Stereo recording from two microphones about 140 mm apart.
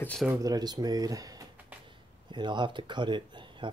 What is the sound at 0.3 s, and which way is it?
Speech, 25° right (ahead or behind).